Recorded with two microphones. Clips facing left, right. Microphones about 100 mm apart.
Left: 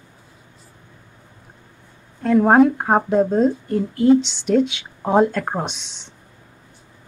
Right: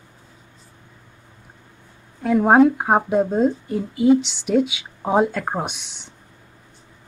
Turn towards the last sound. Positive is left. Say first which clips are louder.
# left 1 dB
turn(degrees=-10)  # may be behind; listen again after turning